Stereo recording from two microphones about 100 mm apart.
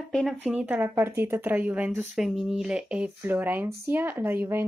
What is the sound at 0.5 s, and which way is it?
Speech, 15° right (ahead or behind).